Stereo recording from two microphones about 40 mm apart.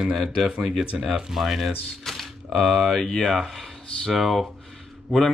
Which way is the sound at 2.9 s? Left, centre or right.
Centre.